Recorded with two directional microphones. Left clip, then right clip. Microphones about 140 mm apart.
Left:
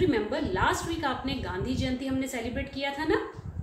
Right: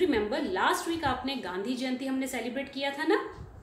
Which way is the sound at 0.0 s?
20° right (ahead or behind).